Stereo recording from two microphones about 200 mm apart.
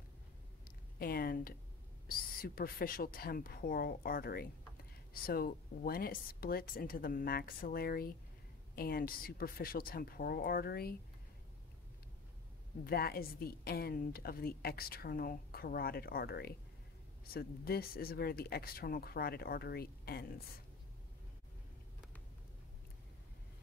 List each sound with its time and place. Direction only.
0.9 s a sound: 50° left (ahead or behind)
2.0 s a woman's voice: 45° left (ahead or behind)
12.8 s a woman's voice: 50° left (ahead or behind)